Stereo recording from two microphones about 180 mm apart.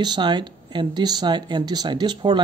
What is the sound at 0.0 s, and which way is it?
Speech, 25° right (ahead or behind).